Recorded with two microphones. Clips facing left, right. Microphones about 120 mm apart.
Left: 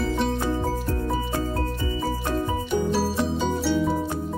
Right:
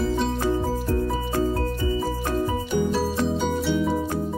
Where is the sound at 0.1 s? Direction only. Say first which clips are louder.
Right 1 dB; centre (ahead or behind).